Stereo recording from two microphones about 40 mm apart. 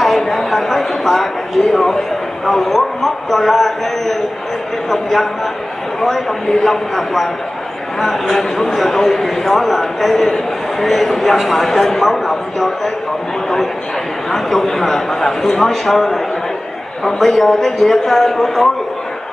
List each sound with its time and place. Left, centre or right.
0.0 s a man's voice: centre
14.3 s speech: centre